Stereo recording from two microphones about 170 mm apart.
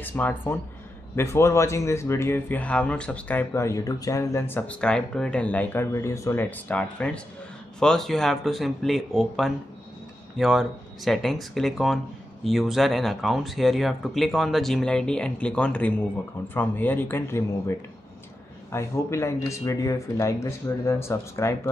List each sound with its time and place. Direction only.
0.0 s speech: 10° left (ahead or behind)